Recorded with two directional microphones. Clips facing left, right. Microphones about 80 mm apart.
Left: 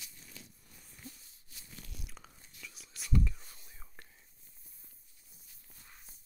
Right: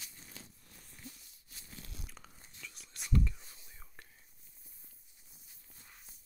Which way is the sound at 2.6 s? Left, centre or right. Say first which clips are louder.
Even; centre.